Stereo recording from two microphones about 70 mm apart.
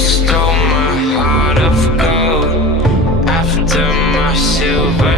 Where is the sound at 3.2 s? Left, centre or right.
Centre.